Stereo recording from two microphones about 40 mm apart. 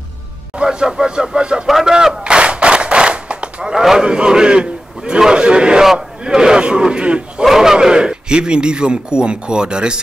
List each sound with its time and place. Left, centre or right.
0.6 s speech: centre
2.2 s a sound: right
3.7 s speech: centre; by 7.4 s right
7.4 s speech: centre